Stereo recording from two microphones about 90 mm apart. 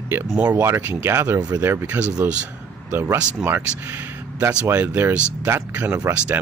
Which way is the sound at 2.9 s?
25° right (ahead or behind).